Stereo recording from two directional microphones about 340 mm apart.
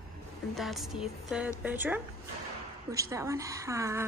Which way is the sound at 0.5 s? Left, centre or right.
Centre.